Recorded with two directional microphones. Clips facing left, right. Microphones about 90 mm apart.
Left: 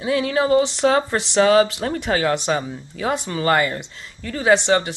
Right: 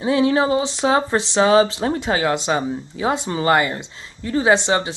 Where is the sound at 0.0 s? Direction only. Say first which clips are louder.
Right 3 dB; 25° right (ahead or behind).